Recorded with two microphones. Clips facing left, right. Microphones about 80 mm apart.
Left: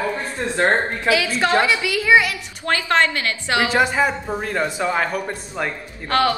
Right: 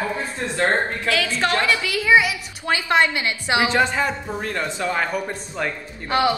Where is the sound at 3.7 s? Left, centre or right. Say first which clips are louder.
Left 2 dB; centre.